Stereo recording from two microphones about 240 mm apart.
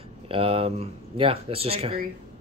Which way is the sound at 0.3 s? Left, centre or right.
Right.